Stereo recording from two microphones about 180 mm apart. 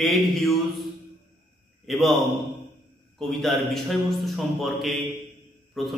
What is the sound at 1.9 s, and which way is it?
Speech, centre (ahead or behind).